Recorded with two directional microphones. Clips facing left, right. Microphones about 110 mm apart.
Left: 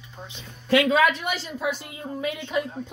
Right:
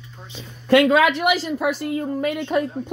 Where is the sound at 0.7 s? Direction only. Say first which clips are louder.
Right 4 dB; 65° right (ahead or behind).